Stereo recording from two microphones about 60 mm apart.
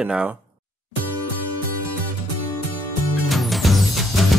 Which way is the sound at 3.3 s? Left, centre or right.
Centre.